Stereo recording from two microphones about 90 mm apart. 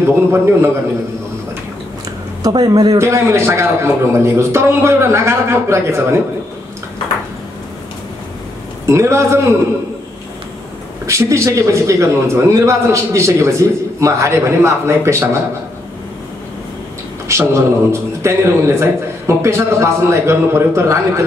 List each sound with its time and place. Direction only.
0.0 s a man's voice: 30° right (ahead or behind)
2.4 s a man's voice: 40° right (ahead or behind)
8.8 s a man's voice: 30° right (ahead or behind)
11.1 s a man's voice: 35° right (ahead or behind)
17.3 s a man's voice: 30° right (ahead or behind)